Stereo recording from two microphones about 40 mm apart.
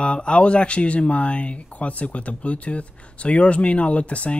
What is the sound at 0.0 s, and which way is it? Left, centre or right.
Speech, left.